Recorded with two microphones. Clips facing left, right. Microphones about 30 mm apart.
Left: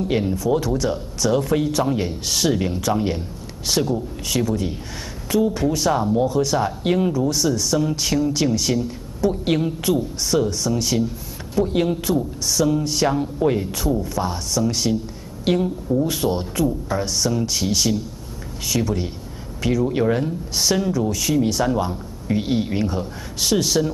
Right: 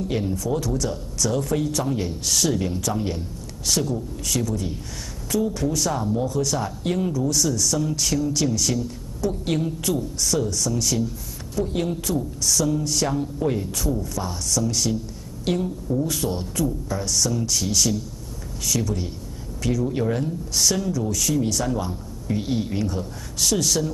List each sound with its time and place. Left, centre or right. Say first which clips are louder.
0.1 s speech: left 5 dB; left